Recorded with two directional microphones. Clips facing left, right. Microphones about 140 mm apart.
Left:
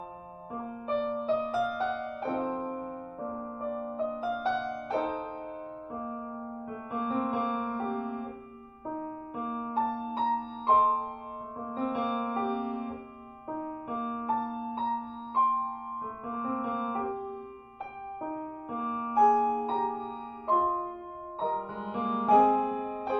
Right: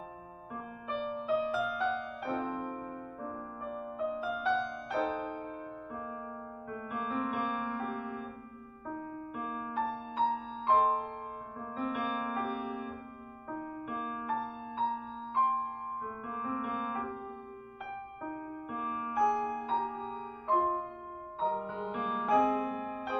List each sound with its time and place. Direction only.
0.6 s music: 35° left (ahead or behind)
2.5 s music: 25° left (ahead or behind)
16.3 s music: 25° left (ahead or behind)
18.2 s music: 25° left (ahead or behind)